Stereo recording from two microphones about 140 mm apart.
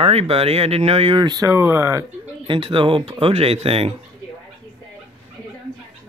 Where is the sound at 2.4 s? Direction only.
40° right (ahead or behind).